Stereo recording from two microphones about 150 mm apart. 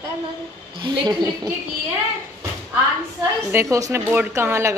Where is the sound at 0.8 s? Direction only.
30° right (ahead or behind).